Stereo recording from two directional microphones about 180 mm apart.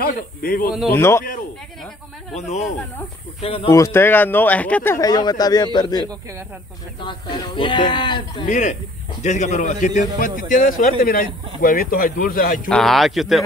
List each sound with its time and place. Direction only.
0.0 s speech: 55° left (ahead or behind)
0.9 s speech: 15° left (ahead or behind)
2.3 s speech: 40° left (ahead or behind)
3.7 s speech: 15° left (ahead or behind)
8.5 s speech: 40° left (ahead or behind)
12.6 s speech: centre (ahead or behind)